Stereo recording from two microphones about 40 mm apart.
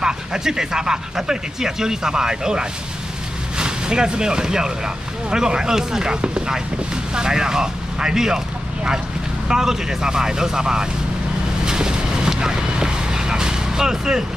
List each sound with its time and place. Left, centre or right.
0.0 s speech: centre
7.2 s speech: centre
9.5 s speech: centre
11.6 s boat: centre